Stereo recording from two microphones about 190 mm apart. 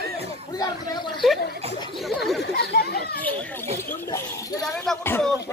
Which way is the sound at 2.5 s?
55° left (ahead or behind).